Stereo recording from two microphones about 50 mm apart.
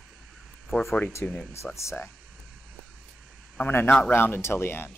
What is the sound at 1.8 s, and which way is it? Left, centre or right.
Speech, left.